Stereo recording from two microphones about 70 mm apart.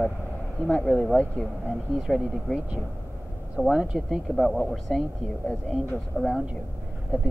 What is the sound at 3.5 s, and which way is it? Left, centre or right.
Speech, centre.